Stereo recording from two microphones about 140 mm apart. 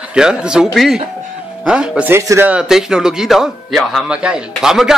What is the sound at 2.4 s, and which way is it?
Speech, 5° right (ahead or behind).